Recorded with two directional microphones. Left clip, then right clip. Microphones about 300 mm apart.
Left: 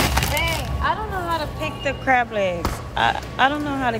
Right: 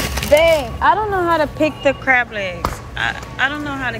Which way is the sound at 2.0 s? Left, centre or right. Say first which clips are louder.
Right 2 dB; centre.